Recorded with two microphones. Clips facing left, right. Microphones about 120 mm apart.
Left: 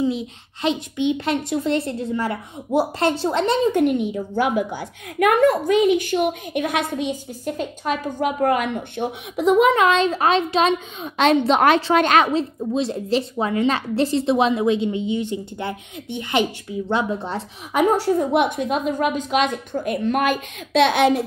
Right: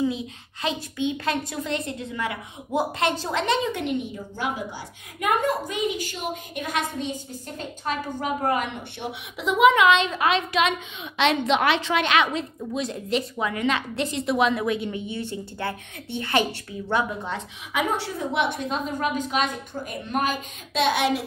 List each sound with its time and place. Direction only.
0.0 s a woman's voice: 25° left (ahead or behind); by 7.0 s 60° left (ahead or behind)
7.0 s a woman's voice: 10° left (ahead or behind)
7.8 s a woman's voice: 50° left (ahead or behind); by 16.4 s 15° left (ahead or behind)
16.9 s a woman's voice: 30° left (ahead or behind); by 19.0 s 50° left (ahead or behind)
19.7 s a woman's voice: 60° left (ahead or behind)